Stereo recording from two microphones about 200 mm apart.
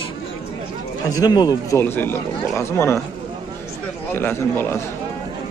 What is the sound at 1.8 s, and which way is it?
Speech, 10° left (ahead or behind).